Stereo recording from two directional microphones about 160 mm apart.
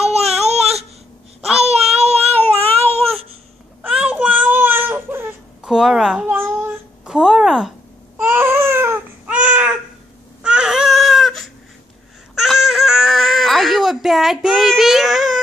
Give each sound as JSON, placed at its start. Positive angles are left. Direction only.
{"t": 0.0, "sound": "baby cry", "side_deg": -40}
{"t": 2.3, "sound": "cat", "side_deg": 10}
{"t": 3.8, "sound": "baby cry", "side_deg": -5}
{"t": 5.7, "sound": "a sound", "side_deg": -5}
{"t": 7.1, "sound": "speech", "side_deg": -5}
{"t": 8.2, "sound": "baby cry", "side_deg": -15}